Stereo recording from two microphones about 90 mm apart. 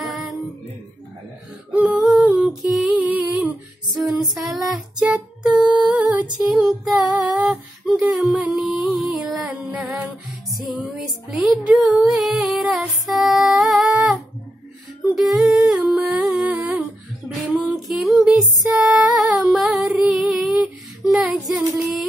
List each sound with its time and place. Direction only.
0.0 s music: centre (ahead or behind)
1.7 s female singing: 15° right (ahead or behind)
2.7 s music: 10° right (ahead or behind)
4.0 s music: centre (ahead or behind)
6.5 s music: 5° right (ahead or behind)
7.2 s female singing: 15° right (ahead or behind)
7.8 s a sound: 5° right (ahead or behind)
8.5 s music: centre (ahead or behind)
15.6 s humming: 10° right (ahead or behind)
16.1 s music: 10° right (ahead or behind)
17.8 s music: centre (ahead or behind)